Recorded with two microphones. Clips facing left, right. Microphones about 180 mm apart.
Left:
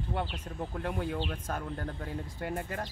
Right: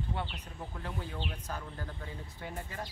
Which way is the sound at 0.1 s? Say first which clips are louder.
Left 4 dB; 50° left (ahead or behind).